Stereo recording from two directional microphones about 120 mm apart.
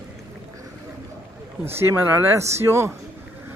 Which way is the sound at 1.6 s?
20° right (ahead or behind).